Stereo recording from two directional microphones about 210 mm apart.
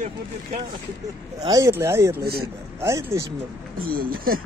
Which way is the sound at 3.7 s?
45° right (ahead or behind).